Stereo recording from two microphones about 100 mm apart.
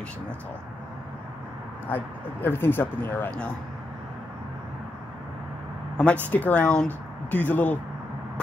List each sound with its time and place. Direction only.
1.9 s speech: 20° left (ahead or behind)
6.3 s speech: 15° left (ahead or behind)